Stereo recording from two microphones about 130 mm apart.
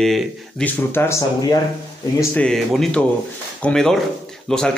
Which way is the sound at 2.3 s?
5° left (ahead or behind).